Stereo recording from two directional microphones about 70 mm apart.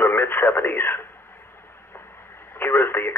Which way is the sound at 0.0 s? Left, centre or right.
Left.